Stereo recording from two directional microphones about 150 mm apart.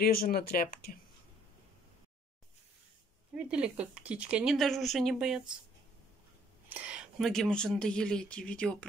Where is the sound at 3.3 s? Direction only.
5° right (ahead or behind).